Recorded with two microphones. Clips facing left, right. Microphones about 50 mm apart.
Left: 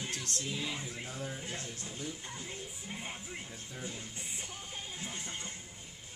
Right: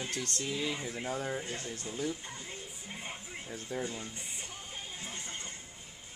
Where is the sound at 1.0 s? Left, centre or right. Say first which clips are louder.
Right 6 dB; right.